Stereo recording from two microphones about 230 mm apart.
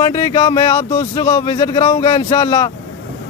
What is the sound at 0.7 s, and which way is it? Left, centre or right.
Speech, centre.